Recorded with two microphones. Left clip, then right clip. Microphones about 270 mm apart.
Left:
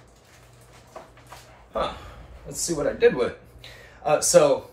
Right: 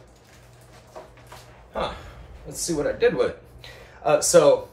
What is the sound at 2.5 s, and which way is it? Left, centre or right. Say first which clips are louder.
Speech: even; centre.